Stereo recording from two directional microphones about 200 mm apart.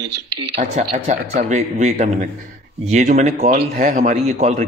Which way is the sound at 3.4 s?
45° right (ahead or behind).